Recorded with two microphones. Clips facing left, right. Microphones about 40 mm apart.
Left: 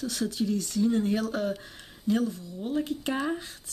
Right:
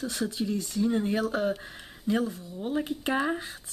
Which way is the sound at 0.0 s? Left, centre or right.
Centre.